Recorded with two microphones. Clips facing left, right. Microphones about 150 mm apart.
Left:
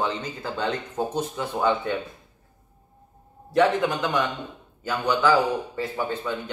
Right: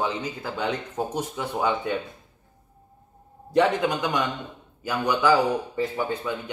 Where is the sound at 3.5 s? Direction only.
15° right (ahead or behind).